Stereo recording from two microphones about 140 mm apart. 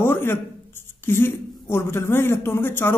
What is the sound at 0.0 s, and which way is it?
A man's voice, 15° left (ahead or behind).